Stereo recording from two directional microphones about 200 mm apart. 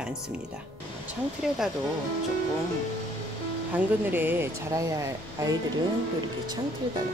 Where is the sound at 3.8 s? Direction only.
10° right (ahead or behind).